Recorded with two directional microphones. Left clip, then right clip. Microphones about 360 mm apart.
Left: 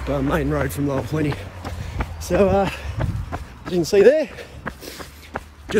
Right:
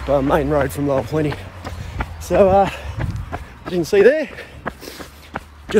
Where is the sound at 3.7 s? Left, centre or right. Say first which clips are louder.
Right 1 dB; centre.